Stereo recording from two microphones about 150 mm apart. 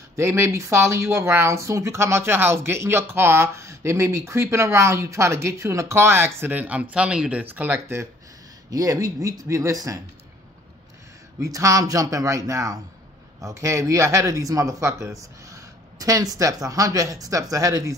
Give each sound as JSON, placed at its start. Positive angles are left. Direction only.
{"t": 0.1, "sound": "a man's voice", "side_deg": -20}
{"t": 11.3, "sound": "a man's voice", "side_deg": -20}